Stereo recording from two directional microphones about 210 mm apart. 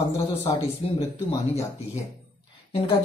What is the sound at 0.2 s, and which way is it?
Speech, 30° left (ahead or behind).